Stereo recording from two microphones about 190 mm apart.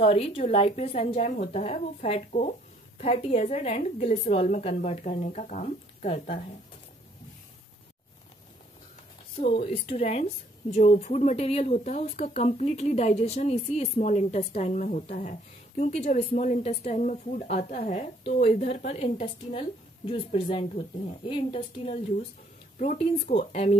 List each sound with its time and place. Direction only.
0.0 s a woman's voice: 30° left (ahead or behind)
9.4 s a woman's voice: 30° left (ahead or behind)